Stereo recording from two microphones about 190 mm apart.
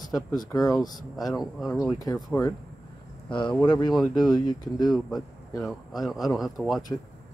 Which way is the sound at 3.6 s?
25° left (ahead or behind).